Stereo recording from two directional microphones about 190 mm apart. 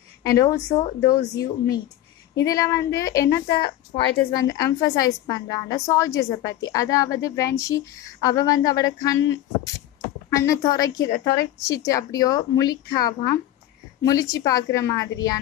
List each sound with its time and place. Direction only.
0.2 s a woman's voice: 15° left (ahead or behind)
10.3 s a woman's voice: 15° left (ahead or behind)